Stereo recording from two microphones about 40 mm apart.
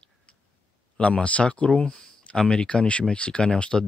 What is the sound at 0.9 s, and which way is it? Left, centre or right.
Speech, left.